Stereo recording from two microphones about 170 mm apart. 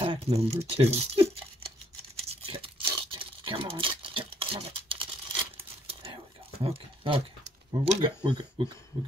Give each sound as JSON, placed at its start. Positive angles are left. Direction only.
{"t": 0.0, "sound": "speech", "side_deg": -35}
{"t": 2.1, "sound": "tearing", "side_deg": -35}
{"t": 6.6, "sound": "speech", "side_deg": -35}